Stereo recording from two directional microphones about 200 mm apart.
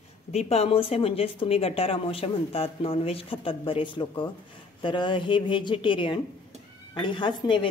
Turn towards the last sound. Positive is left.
turn(degrees=25)  # may be behind; listen again after turning